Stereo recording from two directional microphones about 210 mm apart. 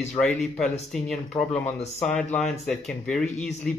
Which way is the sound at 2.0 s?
5° left (ahead or behind).